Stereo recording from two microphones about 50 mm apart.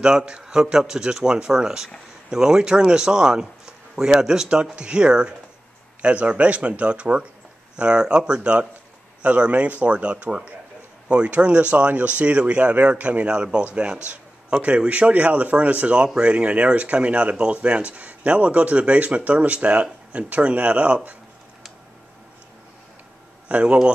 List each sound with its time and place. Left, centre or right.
0.0 s speech: centre
23.5 s speech: right